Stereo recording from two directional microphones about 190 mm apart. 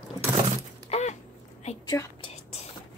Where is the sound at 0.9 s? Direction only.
35° left (ahead or behind).